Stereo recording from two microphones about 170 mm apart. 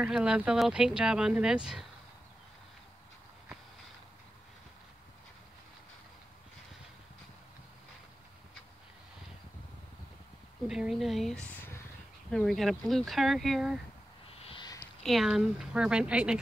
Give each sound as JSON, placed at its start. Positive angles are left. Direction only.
{"t": 0.0, "sound": "speech", "side_deg": -5}
{"t": 10.7, "sound": "speech", "side_deg": 0}
{"t": 14.4, "sound": "a sound", "side_deg": 30}
{"t": 15.0, "sound": "speech", "side_deg": 0}